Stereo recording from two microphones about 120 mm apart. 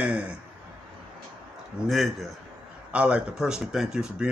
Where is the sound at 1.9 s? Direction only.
Centre (ahead or behind).